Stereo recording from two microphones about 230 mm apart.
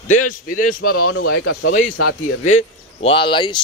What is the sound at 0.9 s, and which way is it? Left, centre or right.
Speech, left.